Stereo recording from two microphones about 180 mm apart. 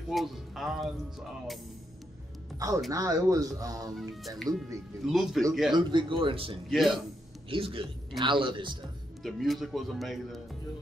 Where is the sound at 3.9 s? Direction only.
Centre (ahead or behind).